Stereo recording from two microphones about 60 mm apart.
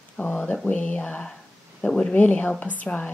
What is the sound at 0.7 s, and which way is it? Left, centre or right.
Speech, left.